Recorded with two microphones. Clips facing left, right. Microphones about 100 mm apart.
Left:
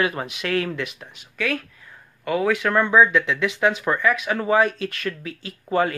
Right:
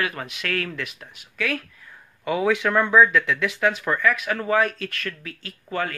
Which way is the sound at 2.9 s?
5° left (ahead or behind).